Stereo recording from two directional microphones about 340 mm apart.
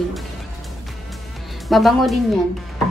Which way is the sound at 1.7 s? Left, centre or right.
Centre.